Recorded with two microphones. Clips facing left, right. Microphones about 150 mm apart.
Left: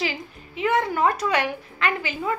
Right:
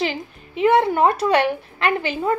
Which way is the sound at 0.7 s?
30° right (ahead or behind).